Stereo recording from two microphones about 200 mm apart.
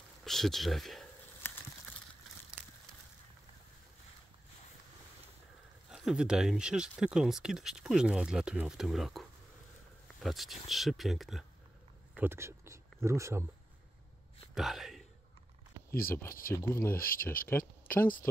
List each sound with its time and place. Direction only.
0.2 s a sound: centre (ahead or behind)
5.9 s speech: centre (ahead or behind)
10.2 s speech: centre (ahead or behind)
12.2 s speech: 10° right (ahead or behind)
14.5 s a sound: centre (ahead or behind)
15.9 s speech: 45° left (ahead or behind)
16.5 s speech: 15° left (ahead or behind)
17.1 s speech: 45° left (ahead or behind)
17.5 s speech: 10° left (ahead or behind)